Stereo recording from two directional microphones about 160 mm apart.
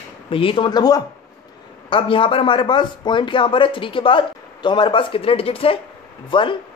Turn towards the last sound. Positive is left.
turn(degrees=30)  # may be behind; listen again after turning